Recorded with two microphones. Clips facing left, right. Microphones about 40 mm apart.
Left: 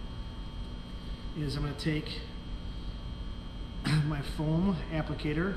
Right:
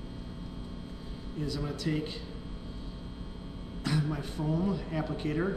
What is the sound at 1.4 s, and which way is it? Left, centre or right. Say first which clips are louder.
Speech: right 1 dB; centre.